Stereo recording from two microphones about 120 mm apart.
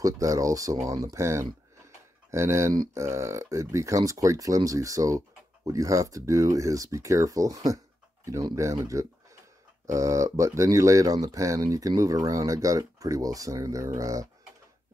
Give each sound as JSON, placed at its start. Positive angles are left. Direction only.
{"t": 0.0, "sound": "speech", "side_deg": -30}